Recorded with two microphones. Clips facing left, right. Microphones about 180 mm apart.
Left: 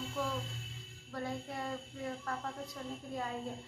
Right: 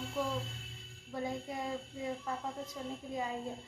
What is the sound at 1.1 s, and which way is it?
A child's voice, 15° right (ahead or behind).